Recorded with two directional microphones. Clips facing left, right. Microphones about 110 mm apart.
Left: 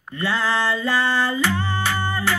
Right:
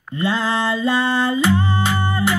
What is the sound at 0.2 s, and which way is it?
Music, 20° right (ahead or behind).